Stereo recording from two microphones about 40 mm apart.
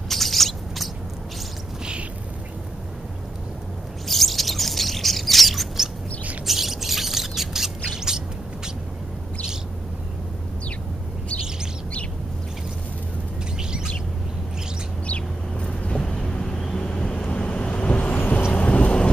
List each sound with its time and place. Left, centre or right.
0.1 s a sound: centre
4.1 s bird: centre
6.4 s squawk: centre
13.6 s bird: centre
15.0 s bird: left
16.0 s vehicle: centre; by 19.0 s left